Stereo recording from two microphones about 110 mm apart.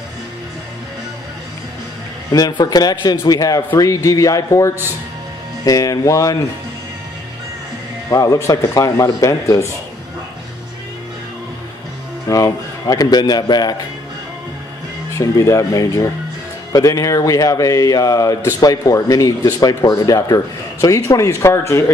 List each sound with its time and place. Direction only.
2.3 s speech: 35° left (ahead or behind)
8.1 s speech: 30° left (ahead or behind)
12.3 s speech: 30° left (ahead or behind)
15.1 s speech: 30° left (ahead or behind)